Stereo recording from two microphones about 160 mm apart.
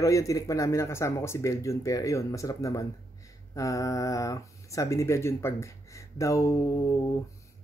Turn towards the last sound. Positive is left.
turn(degrees=20)  # may be behind; listen again after turning